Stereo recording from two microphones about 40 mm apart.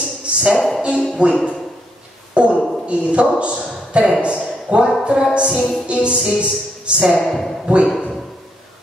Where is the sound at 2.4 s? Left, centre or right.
Right.